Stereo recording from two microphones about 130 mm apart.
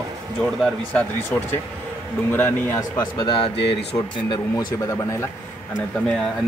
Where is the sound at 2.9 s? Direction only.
35° left (ahead or behind).